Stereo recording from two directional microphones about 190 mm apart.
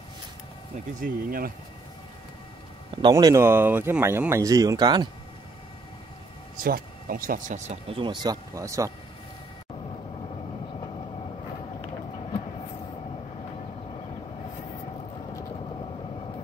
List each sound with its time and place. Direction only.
1.0 s speech: 50° right (ahead or behind)
3.0 s speech: 20° right (ahead or behind)
6.5 s speech: 50° right (ahead or behind); by 8.9 s 15° right (ahead or behind)